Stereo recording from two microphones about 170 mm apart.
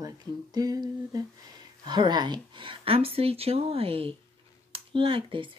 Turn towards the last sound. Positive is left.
turn(degrees=-30)  # may be behind; listen again after turning